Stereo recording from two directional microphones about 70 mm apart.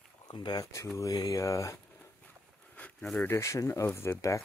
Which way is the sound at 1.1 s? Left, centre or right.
Left.